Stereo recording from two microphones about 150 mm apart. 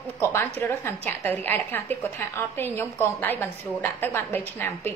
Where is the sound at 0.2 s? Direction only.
15° left (ahead or behind).